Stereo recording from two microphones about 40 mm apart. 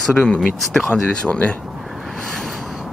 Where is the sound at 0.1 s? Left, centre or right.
Left.